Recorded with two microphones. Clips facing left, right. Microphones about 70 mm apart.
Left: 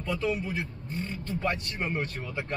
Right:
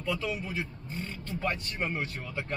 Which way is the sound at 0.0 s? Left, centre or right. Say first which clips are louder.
Left 3 dB; centre.